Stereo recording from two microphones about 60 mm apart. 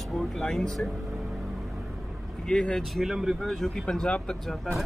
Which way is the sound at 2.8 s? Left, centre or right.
Centre.